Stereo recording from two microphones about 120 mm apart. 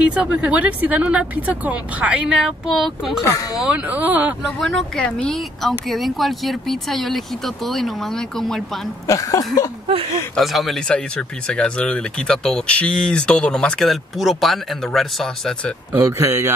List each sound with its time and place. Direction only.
0.0 s speech: 10° right (ahead or behind)
3.3 s speech: 30° left (ahead or behind)
3.6 s speech: 10° right (ahead or behind)
4.4 s speech: centre (ahead or behind)
9.0 s speech: 25° left (ahead or behind)
10.3 s speech: centre (ahead or behind)
15.9 s speech: 25° right (ahead or behind)